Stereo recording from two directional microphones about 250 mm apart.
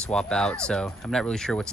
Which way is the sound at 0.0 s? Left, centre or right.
Centre.